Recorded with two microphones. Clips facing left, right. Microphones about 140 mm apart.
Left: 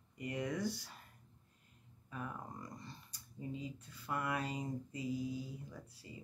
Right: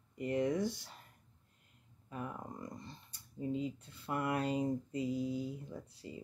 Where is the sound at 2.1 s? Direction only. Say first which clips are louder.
Right 2 dB; 25° right (ahead or behind).